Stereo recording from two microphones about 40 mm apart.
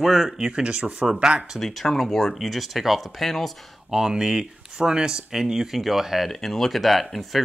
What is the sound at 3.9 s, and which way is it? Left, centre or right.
Speech, centre.